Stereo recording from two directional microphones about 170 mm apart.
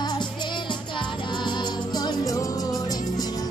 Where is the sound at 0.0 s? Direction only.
25° left (ahead or behind).